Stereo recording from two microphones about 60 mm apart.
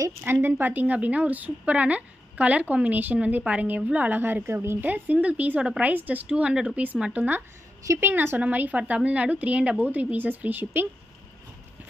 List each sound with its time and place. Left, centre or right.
0.2 s a woman's voice: right
4.2 s a woman's voice: right
4.7 s a woman's voice: right
6.7 s a woman's voice: right
8.4 s a woman's voice: right